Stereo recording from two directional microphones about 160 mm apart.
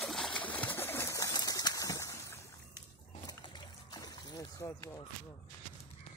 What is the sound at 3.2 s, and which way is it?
Music, 25° left (ahead or behind).